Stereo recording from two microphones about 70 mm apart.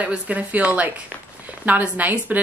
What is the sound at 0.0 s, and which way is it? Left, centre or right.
A woman's voice, centre.